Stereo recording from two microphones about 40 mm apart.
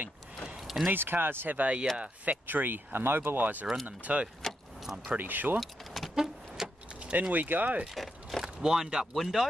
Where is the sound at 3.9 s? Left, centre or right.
Right.